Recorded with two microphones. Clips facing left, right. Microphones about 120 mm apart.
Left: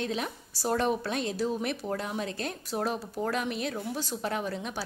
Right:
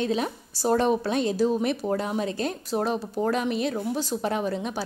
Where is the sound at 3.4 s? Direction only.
Centre (ahead or behind).